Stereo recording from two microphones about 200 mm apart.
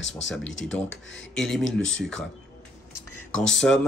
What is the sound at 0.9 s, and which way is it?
Speech, 65° left (ahead or behind).